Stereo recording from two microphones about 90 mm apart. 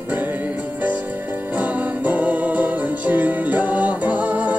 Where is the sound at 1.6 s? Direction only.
15° right (ahead or behind).